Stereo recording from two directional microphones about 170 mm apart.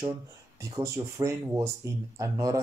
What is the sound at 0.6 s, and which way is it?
Speech, 20° right (ahead or behind).